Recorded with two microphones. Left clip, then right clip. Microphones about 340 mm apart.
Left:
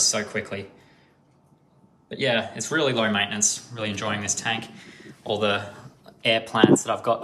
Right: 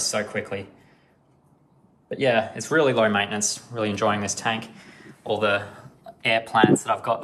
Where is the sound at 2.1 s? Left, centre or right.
Centre.